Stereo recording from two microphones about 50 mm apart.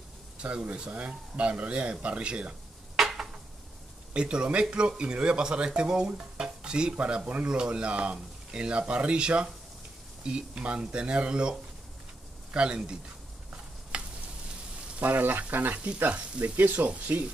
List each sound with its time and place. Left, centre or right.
0.4 s speech: right
3.0 s a sound: centre
4.1 s speech: right
13.9 s sizzle: centre
15.0 s speech: right
16.0 s speech: right